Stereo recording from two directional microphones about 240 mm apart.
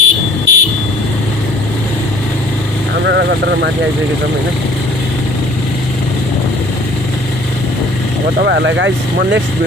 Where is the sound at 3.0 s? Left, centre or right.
Right.